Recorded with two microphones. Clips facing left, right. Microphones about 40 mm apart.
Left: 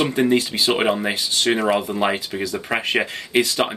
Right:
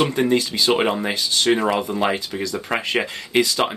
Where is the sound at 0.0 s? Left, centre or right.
Centre.